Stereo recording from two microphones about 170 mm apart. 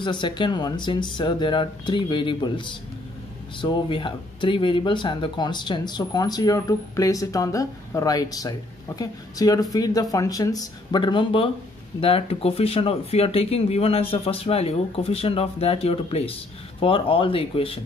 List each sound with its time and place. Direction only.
0.0 s speech: 25° left (ahead or behind)